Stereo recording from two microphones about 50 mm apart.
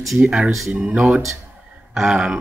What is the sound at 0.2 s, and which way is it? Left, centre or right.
Speech, centre.